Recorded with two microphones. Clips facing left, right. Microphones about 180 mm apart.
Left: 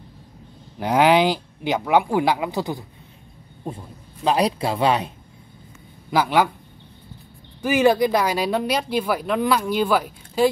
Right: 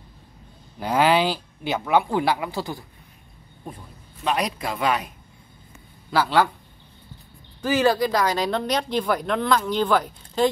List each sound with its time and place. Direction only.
0.7 s speech: 15° left (ahead or behind)
3.6 s a man's voice: 30° left (ahead or behind)
6.0 s speech: 15° left (ahead or behind)
7.6 s speech: 15° left (ahead or behind)